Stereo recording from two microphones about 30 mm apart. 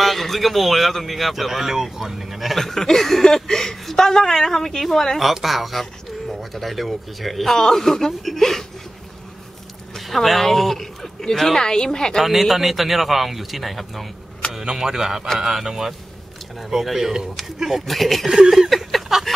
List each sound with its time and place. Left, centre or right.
0.0 s speech: centre
2.6 s speech: centre
5.2 s speech: centre
7.5 s speech: centre
9.9 s speech: centre
11.6 s speech: left
12.2 s speech: centre
14.5 s speech: centre
16.7 s speech: centre
17.8 s speech: centre
18.7 s a sound: centre
19.1 s a sound: centre